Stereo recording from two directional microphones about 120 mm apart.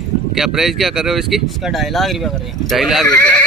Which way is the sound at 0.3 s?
5° right (ahead or behind).